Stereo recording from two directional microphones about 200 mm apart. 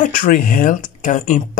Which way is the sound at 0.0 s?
40° left (ahead or behind).